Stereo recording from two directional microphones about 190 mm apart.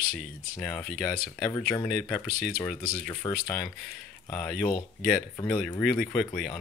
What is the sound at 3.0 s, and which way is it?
Speech, 10° left (ahead or behind).